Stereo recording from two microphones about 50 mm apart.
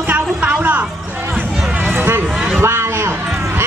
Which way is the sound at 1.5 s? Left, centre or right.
Centre.